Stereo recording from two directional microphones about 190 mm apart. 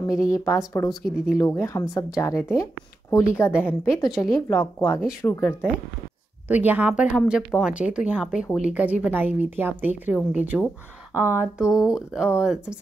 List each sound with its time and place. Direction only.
0.2 s speech: 15° left (ahead or behind)
0.8 s speech: centre (ahead or behind)
1.4 s speech: 15° left (ahead or behind)
6.4 s speech: 10° right (ahead or behind)